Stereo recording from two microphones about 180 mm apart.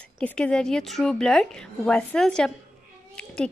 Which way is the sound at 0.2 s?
5° left (ahead or behind).